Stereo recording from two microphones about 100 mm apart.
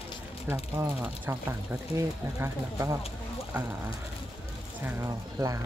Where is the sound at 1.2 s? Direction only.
25° right (ahead or behind).